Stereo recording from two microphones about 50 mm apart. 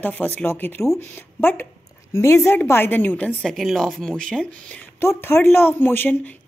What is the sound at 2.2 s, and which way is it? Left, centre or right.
Speech, left.